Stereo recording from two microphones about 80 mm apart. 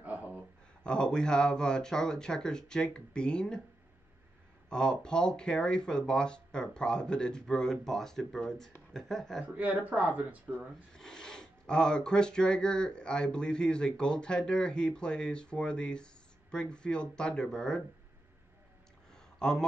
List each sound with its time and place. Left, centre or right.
0.0 s a sound: centre
0.8 s speech: centre
4.6 s speech: centre
9.5 s speech: centre
10.9 s speech: centre
19.4 s speech: centre